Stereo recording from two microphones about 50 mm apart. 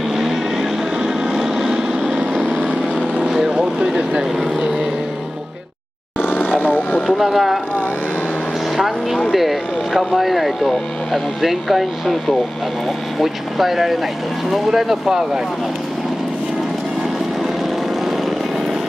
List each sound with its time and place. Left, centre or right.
0.1 s vehicle: centre
3.4 s a sound: centre
6.6 s vehicle: left
7.2 s speech: centre
8.7 s speech: centre